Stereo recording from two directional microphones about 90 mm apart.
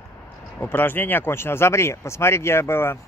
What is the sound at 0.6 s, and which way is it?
Speech, 25° left (ahead or behind).